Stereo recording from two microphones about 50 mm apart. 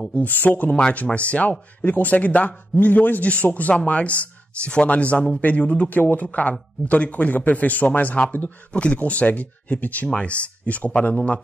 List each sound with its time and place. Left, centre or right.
0.1 s a man's voice: left
0.7 s a man's voice: left
11.1 s a man's voice: centre